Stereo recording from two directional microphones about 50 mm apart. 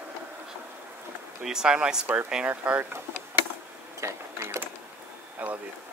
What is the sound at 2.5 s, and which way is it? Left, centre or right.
Speech, right.